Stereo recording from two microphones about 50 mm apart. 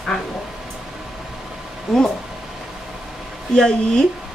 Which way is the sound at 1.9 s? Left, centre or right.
Centre.